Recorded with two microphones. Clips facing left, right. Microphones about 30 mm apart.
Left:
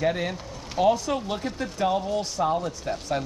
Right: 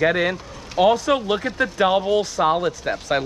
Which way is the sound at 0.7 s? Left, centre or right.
Right.